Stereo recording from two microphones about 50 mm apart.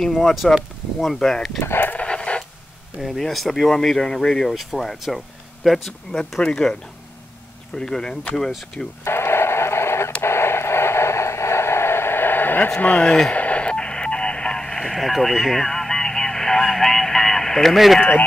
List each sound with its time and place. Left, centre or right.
0.4 s speech: centre
1.6 s speech: left
2.0 s radio: centre
3.0 s speech: centre
6.4 s speech: centre
8.4 s speech: centre
9.0 s radio: left
12.8 s speech: left
13.3 s radio: left; by 17.7 s centre
17.7 s speech: centre